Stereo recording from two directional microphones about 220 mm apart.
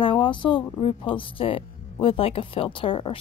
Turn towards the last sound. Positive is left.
turn(degrees=25)  # may be behind; listen again after turning